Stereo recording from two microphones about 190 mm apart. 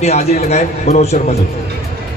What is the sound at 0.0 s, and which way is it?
A man's voice, 35° left (ahead or behind).